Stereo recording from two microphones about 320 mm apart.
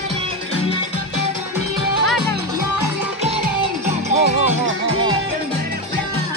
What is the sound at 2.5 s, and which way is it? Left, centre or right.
Music, centre.